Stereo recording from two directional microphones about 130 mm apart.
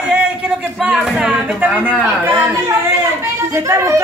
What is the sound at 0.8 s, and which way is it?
Speech, 5° right (ahead or behind).